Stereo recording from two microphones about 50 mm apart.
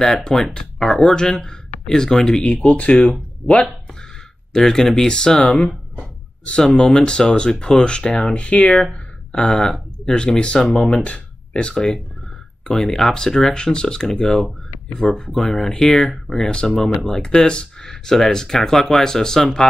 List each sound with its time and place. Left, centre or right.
0.0 s speech: centre
2.4 s speech: left
4.6 s speech: centre
5.4 s speech: left
6.6 s speech: centre
9.3 s speech: centre
11.1 s a sound: left
11.7 s speech: centre